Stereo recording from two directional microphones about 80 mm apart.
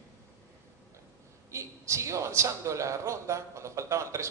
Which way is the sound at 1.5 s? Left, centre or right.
Right.